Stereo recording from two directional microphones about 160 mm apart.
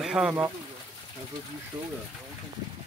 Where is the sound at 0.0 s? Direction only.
5° right (ahead or behind).